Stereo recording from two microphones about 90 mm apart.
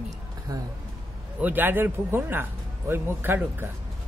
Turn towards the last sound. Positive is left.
turn(degrees=-20)  # may be behind; listen again after turning